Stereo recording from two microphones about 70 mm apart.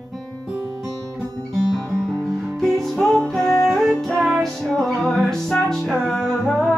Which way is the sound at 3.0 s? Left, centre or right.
Centre.